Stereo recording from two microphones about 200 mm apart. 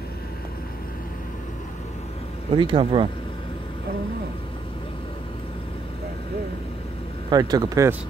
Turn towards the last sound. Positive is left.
turn(degrees=-15)  # may be behind; listen again after turning